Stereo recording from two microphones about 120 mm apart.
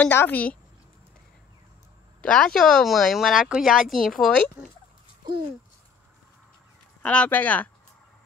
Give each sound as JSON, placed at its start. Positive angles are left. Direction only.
{"t": 0.0, "sound": "speech", "side_deg": 15}
{"t": 2.2, "sound": "speech", "side_deg": 5}
{"t": 7.0, "sound": "speech", "side_deg": 10}